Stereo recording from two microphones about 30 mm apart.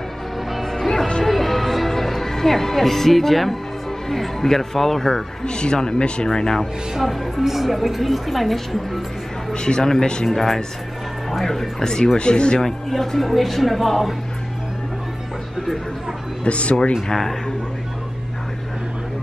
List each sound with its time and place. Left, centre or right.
0.5 s music: centre
0.7 s music: centre
4.1 s speech: centre
5.4 s speech: left
6.2 s speech: left
7.0 s a woman's voice: centre
9.5 s a man's voice: left
10.2 s a woman's voice: centre
11.8 s speech: left
12.2 s speech: left
12.6 s a woman's voice: centre
16.4 s speech: left
17.1 s speech: centre